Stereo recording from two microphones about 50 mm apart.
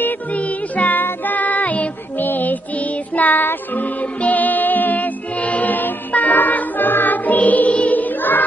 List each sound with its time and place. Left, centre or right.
0.0 s music: left